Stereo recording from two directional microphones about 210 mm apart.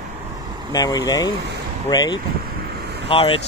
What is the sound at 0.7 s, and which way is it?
Speech, 20° left (ahead or behind).